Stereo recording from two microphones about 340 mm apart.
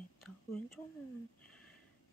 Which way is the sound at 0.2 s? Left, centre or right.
Centre.